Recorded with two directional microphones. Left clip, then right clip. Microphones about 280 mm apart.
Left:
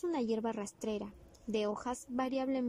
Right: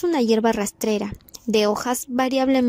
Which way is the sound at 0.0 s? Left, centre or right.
Right.